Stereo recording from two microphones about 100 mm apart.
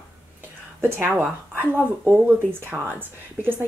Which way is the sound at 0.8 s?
20° right (ahead or behind).